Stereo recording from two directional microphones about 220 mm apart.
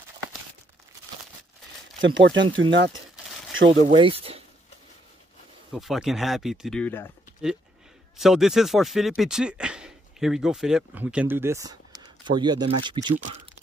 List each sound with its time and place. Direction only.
2.0 s speech: 55° right (ahead or behind)
3.9 s speech: 25° right (ahead or behind)
5.7 s speech: centre (ahead or behind)
8.2 s speech: centre (ahead or behind); by 13.1 s 20° right (ahead or behind)